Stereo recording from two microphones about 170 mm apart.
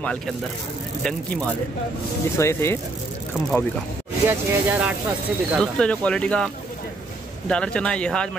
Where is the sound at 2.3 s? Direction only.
15° left (ahead or behind).